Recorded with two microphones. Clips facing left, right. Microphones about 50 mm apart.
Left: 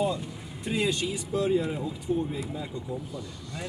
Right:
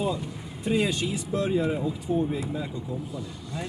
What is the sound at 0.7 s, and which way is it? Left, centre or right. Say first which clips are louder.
Speech: right 2 dB; centre.